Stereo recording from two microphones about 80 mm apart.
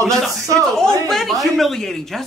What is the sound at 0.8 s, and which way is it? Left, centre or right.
Speech, centre.